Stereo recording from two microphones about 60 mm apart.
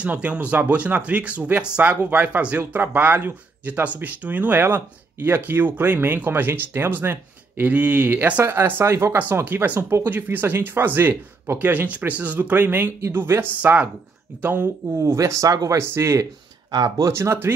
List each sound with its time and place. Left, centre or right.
0.0 s speech: right
8.5 s speech: right
9.3 s speech: right
10.1 s speech: right
15.0 s speech: right
15.8 s speech: right
16.7 s speech: right
17.1 s speech: right